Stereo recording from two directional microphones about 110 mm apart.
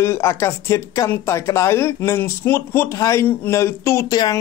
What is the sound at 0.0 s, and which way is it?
Speech, 25° left (ahead or behind).